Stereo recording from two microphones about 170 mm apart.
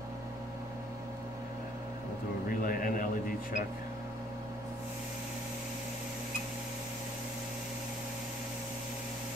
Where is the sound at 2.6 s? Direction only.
55° left (ahead or behind).